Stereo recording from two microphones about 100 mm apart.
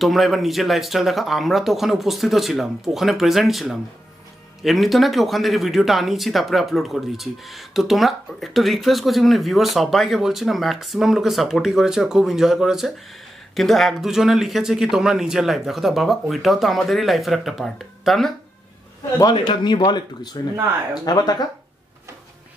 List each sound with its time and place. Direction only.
0.0 s speech: centre (ahead or behind)
19.3 s a man's voice: 50° left (ahead or behind)